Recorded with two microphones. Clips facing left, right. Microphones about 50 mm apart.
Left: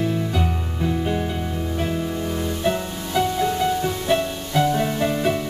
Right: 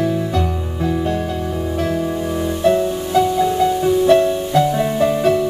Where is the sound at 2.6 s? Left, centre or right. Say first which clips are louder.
Right 11 dB; centre.